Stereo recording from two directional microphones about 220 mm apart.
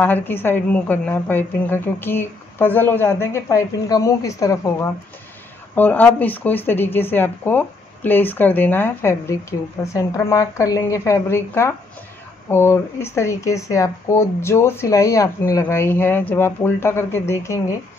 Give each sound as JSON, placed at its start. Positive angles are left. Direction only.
{"t": 0.0, "sound": "speech", "side_deg": 10}